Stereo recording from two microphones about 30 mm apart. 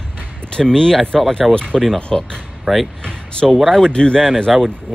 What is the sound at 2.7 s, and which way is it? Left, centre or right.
Speech, right.